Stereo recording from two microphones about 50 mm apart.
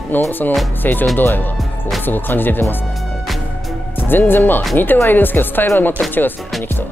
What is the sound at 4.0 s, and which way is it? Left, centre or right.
Speech, left.